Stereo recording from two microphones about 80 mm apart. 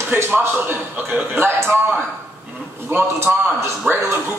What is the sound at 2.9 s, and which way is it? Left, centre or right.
Speech, right.